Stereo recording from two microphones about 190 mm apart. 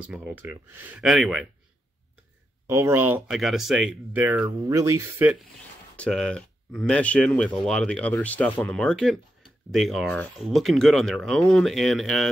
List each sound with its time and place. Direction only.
0.1 s speech: 10° right (ahead or behind)
2.6 s speech: 15° right (ahead or behind)
4.6 s speech: 15° right (ahead or behind)
5.9 s speech: 5° left (ahead or behind)